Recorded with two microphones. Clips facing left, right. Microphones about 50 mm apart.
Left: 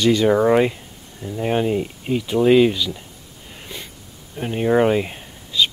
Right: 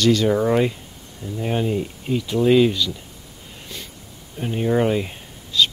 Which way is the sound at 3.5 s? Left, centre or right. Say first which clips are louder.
Left 2 dB; centre.